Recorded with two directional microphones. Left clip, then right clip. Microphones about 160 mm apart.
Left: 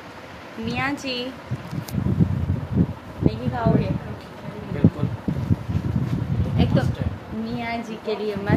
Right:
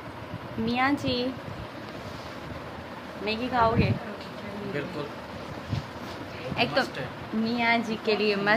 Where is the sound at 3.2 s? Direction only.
20° right (ahead or behind).